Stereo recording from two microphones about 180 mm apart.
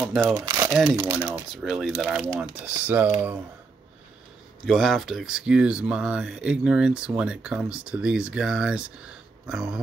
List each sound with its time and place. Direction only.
0.3 s speech: 15° right (ahead or behind)
0.7 s speech: centre (ahead or behind)
2.8 s speech: 10° right (ahead or behind)
4.6 s speech: centre (ahead or behind)